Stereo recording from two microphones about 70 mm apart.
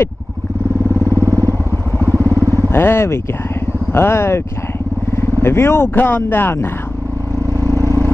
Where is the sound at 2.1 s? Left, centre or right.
Right.